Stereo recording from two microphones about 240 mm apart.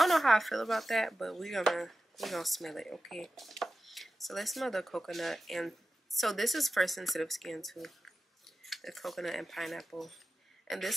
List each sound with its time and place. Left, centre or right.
0.0 s speech: centre